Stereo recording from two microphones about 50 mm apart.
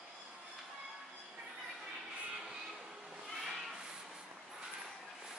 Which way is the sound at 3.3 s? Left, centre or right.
Centre.